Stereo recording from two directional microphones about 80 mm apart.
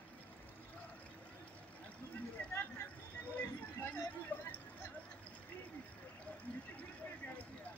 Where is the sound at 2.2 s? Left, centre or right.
Centre.